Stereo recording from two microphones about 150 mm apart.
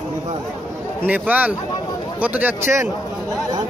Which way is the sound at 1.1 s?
10° right (ahead or behind).